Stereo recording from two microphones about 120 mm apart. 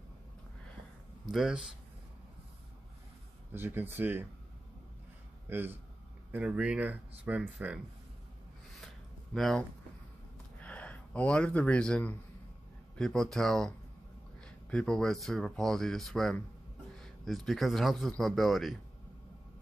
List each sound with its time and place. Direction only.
1.2 s speech: 5° right (ahead or behind)
3.5 s speech: 20° right (ahead or behind)
5.5 s speech: 15° right (ahead or behind)
8.8 s a sound: centre (ahead or behind)
10.6 s speech: 10° left (ahead or behind)